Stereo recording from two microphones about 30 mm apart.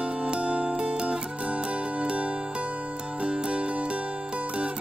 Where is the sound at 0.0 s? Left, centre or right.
Right.